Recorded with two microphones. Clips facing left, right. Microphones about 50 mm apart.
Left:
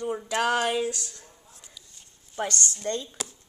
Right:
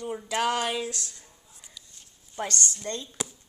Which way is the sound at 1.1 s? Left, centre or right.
Centre.